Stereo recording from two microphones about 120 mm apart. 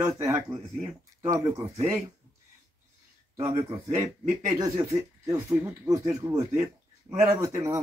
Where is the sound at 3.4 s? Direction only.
25° right (ahead or behind).